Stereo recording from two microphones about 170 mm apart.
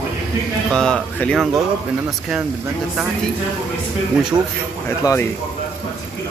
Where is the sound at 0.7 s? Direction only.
5° left (ahead or behind).